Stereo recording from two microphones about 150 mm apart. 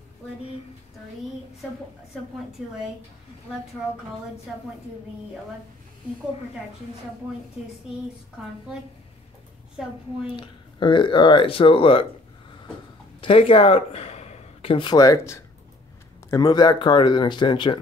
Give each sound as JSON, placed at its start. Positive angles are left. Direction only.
{"t": 10.3, "sound": "speech", "side_deg": 35}
{"t": 13.2, "sound": "speech", "side_deg": 35}